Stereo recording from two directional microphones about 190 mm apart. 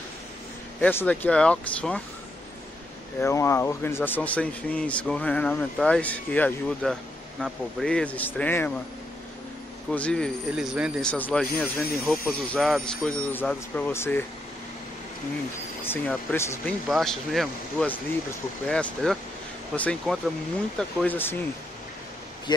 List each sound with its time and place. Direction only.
0.7 s speech: 10° left (ahead or behind)
3.2 s speech: 15° left (ahead or behind)
9.8 s speech: 5° left (ahead or behind)
15.8 s speech: 10° left (ahead or behind)